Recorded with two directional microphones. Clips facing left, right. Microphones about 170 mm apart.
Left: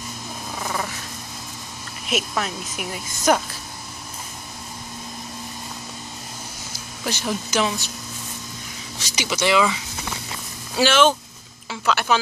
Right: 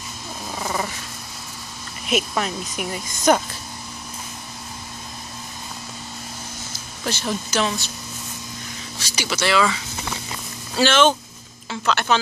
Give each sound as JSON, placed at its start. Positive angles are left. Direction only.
{"t": 0.6, "sound": "wild animals", "side_deg": -5}
{"t": 2.0, "sound": "speech", "side_deg": 0}
{"t": 7.1, "sound": "speech", "side_deg": 15}
{"t": 9.0, "sound": "speech", "side_deg": 15}
{"t": 10.8, "sound": "speech", "side_deg": 5}